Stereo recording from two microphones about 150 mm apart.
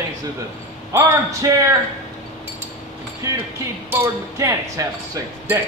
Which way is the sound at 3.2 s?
20° right (ahead or behind).